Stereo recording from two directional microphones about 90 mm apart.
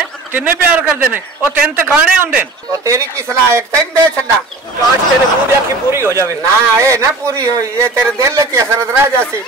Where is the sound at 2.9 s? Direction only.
35° right (ahead or behind).